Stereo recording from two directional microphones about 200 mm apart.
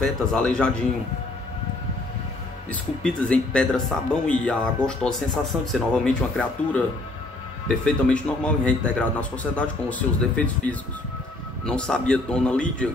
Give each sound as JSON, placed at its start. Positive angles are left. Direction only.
{"t": 0.0, "sound": "speech", "side_deg": 5}
{"t": 2.7, "sound": "speech", "side_deg": 5}
{"t": 7.8, "sound": "a man's voice", "side_deg": 5}